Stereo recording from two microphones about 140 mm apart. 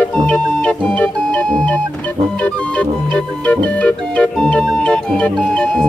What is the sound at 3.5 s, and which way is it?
Music, 10° left (ahead or behind).